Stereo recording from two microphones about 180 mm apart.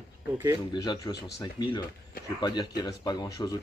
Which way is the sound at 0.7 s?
20° left (ahead or behind).